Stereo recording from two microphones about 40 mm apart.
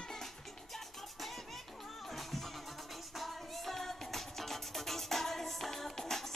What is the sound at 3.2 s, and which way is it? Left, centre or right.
Music, centre.